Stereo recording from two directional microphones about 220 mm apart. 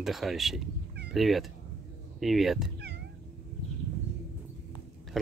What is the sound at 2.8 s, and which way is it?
Cat, 50° right (ahead or behind).